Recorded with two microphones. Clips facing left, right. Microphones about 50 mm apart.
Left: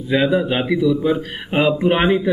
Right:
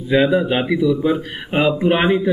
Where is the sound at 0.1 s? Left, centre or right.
Centre.